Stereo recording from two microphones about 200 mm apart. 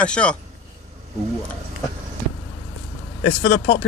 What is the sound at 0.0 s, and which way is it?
Speech, 5° left (ahead or behind).